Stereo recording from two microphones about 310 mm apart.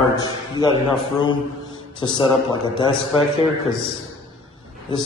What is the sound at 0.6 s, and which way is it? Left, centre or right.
Speech, centre.